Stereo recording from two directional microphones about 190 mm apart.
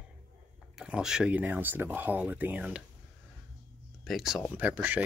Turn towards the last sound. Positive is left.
turn(degrees=-10)  # may be behind; listen again after turning